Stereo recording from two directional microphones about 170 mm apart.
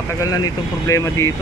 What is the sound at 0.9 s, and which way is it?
Speech, 20° left (ahead or behind).